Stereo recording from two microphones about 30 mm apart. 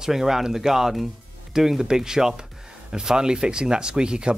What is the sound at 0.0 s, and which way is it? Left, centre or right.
Speech, centre.